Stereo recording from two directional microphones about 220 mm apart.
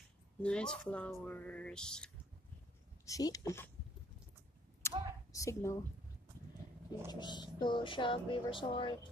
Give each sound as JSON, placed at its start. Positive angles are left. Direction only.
{"t": 0.4, "sound": "music", "side_deg": 5}
{"t": 3.1, "sound": "speech", "side_deg": 15}
{"t": 4.8, "sound": "a sound", "side_deg": 10}
{"t": 5.3, "sound": "speech", "side_deg": 15}
{"t": 7.1, "sound": "speech", "side_deg": 20}